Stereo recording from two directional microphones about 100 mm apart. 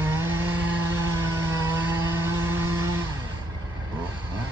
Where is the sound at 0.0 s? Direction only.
25° right (ahead or behind).